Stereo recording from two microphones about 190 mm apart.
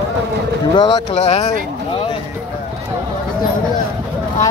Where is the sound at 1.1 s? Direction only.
35° left (ahead or behind).